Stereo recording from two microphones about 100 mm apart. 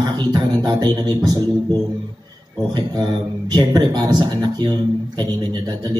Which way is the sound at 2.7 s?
45° right (ahead or behind).